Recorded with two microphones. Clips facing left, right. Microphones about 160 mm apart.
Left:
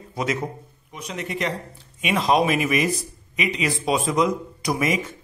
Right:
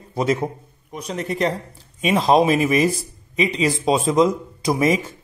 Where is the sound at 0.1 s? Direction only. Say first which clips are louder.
Right 5 dB; 30° right (ahead or behind).